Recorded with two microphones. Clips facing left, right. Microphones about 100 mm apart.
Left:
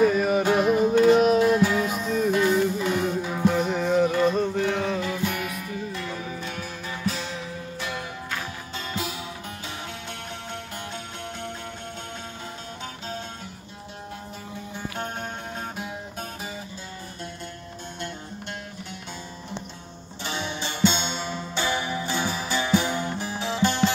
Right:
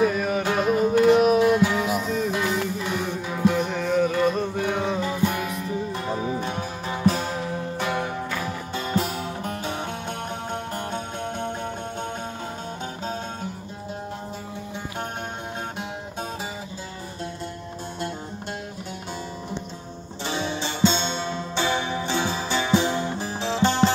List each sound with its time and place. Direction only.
0.0 s music: centre (ahead or behind); by 5.2 s 15° right (ahead or behind)
5.2 s music: 30° right (ahead or behind)
7.1 s music: 50° right (ahead or behind)
20.2 s music: 30° right (ahead or behind)
20.8 s music: 5° left (ahead or behind)
21.5 s music: 25° right (ahead or behind)
22.8 s music: centre (ahead or behind)
23.4 s music: 30° right (ahead or behind)